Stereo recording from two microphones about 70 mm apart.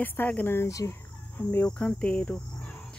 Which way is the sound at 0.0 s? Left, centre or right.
Left.